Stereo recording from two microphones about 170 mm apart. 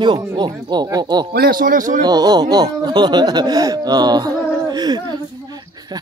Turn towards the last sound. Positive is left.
turn(degrees=-25)  # may be behind; listen again after turning